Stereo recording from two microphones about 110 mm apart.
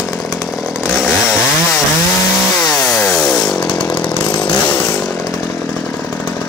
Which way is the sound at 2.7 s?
5° left (ahead or behind).